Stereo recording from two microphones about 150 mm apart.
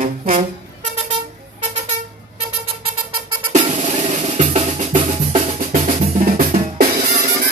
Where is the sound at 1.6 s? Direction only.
50° right (ahead or behind).